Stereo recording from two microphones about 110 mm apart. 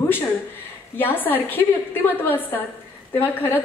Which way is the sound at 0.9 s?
20° left (ahead or behind).